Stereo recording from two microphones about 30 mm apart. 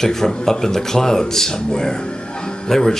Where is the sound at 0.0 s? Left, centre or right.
Centre.